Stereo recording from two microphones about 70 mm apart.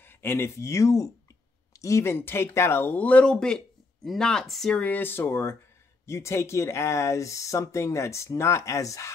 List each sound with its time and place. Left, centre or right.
0.0 s speech: left
2.8 s speech: left
3.3 s speech: centre
4.7 s speech: left